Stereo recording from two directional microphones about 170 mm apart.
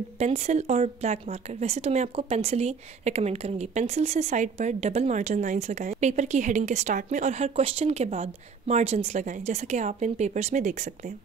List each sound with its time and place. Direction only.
0.2 s a woman's voice: 40° right (ahead or behind)